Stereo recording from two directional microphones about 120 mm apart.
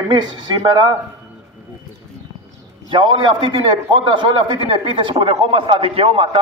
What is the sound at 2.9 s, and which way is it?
A man's voice, 40° right (ahead or behind).